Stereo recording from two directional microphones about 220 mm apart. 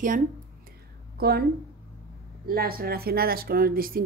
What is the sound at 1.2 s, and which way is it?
Speech, 45° right (ahead or behind).